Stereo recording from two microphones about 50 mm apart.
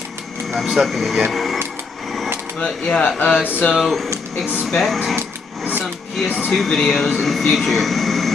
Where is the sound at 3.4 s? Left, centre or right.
Left.